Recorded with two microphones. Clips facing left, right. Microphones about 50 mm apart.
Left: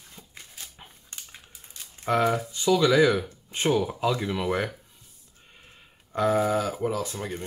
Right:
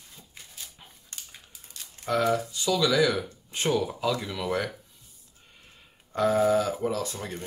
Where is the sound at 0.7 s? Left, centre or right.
Left.